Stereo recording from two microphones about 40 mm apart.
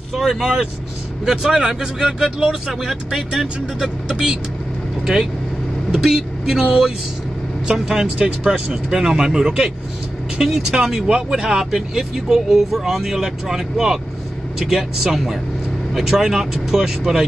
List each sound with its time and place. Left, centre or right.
0.1 s speech: centre